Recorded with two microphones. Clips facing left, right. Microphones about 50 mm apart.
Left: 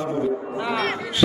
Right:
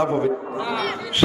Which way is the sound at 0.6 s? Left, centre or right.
Left.